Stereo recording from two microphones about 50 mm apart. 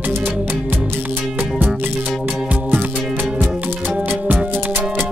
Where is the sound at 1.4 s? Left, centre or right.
Right.